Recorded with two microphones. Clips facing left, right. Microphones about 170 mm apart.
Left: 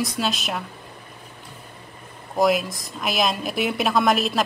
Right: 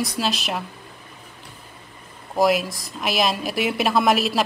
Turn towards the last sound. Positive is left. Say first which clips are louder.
# right 1 dB
turn(degrees=-5)  # may be behind; listen again after turning